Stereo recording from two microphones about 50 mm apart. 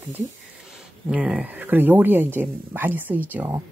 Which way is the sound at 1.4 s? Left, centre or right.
Right.